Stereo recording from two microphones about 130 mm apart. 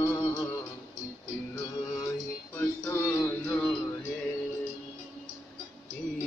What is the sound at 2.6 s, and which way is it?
Music, 20° left (ahead or behind).